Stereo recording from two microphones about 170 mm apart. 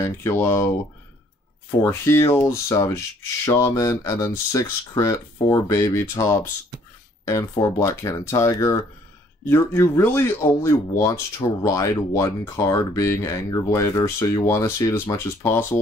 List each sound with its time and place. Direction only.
0.0 s speech: 15° left (ahead or behind)
1.8 s speech: 15° left (ahead or behind)